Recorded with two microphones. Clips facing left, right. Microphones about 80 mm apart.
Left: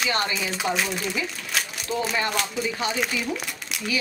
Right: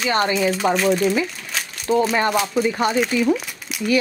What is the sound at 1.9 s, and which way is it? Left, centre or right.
Speech, right.